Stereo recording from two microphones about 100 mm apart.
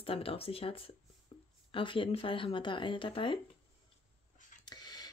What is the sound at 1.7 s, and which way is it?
Speech, 60° left (ahead or behind).